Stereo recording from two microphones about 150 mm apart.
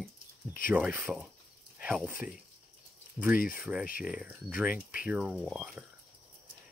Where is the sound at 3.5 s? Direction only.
10° right (ahead or behind).